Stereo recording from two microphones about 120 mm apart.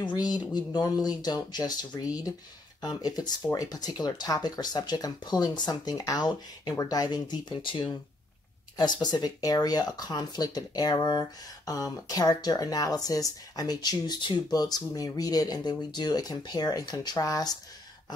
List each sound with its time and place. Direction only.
0.0 s speech: 35° left (ahead or behind)